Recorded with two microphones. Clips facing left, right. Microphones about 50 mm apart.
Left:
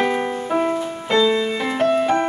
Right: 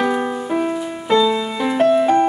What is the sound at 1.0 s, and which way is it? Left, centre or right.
Music, centre.